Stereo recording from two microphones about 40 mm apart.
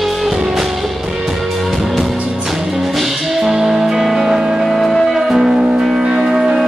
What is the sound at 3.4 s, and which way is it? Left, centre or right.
Music, centre.